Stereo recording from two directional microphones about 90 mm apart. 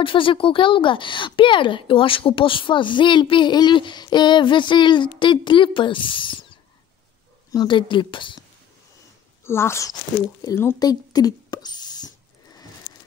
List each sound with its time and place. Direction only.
0.0 s speech: 70° left (ahead or behind)
7.6 s speech: 65° left (ahead or behind)
9.4 s speech: 30° left (ahead or behind)
10.8 s rodents: 45° left (ahead or behind)